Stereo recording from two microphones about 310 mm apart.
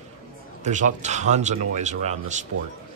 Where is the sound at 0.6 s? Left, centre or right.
Right.